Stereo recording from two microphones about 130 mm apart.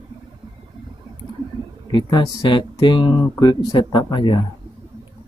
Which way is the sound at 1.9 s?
35° left (ahead or behind).